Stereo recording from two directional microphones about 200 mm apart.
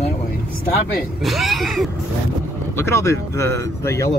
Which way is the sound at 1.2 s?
Centre (ahead or behind).